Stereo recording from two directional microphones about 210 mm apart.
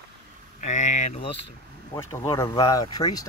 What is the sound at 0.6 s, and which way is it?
Speech, 35° left (ahead or behind).